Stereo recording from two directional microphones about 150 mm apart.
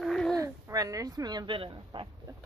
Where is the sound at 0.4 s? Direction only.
20° right (ahead or behind).